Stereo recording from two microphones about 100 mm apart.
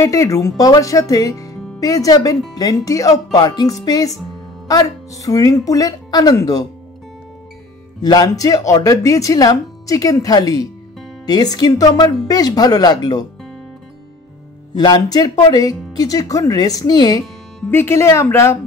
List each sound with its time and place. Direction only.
0.0 s speech: 30° left (ahead or behind)
8.0 s speech: 40° left (ahead or behind)
14.7 s speech: 45° left (ahead or behind)
17.6 s speech: 25° left (ahead or behind)